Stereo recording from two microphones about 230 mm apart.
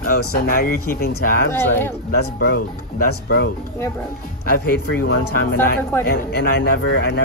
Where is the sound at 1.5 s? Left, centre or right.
Centre.